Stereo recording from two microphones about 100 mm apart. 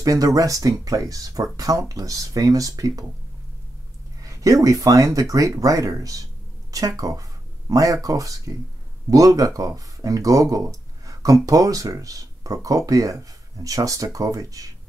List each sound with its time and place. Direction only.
0.0 s speech: 35° right (ahead or behind)
4.2 s speech: 35° right (ahead or behind)